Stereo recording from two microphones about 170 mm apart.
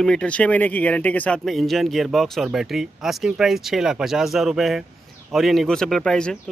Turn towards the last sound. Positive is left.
turn(degrees=5)  # may be behind; listen again after turning